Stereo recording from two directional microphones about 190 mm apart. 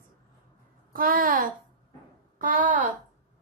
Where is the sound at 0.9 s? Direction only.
50° right (ahead or behind).